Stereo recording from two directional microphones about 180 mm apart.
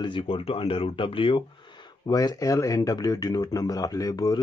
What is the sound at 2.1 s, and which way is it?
Speech, 20° left (ahead or behind).